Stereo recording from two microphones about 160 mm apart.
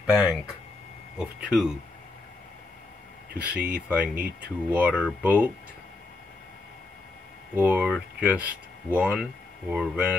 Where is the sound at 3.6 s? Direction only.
10° right (ahead or behind).